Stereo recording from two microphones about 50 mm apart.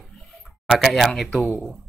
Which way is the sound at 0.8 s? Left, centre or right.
Centre.